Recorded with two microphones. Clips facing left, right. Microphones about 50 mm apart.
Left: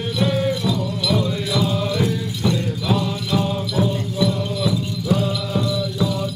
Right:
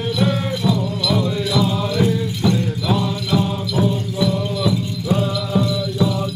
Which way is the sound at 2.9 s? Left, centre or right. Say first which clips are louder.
Right 1 dB; centre.